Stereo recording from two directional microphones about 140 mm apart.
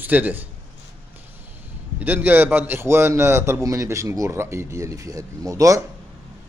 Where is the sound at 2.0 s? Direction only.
10° right (ahead or behind).